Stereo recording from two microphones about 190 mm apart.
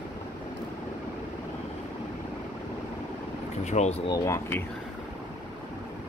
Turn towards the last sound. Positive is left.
turn(degrees=15)  # may be behind; listen again after turning